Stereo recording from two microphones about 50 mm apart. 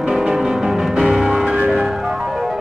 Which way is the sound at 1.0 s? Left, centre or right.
Centre.